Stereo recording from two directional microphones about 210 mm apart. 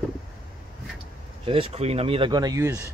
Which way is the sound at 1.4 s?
25° right (ahead or behind).